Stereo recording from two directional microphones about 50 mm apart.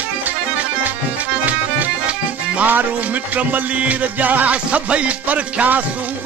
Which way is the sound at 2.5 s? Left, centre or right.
Right.